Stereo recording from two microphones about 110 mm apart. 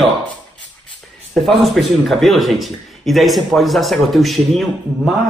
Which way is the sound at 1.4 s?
Centre (ahead or behind).